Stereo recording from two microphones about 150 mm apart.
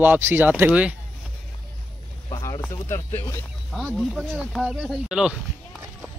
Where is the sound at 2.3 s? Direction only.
20° left (ahead or behind).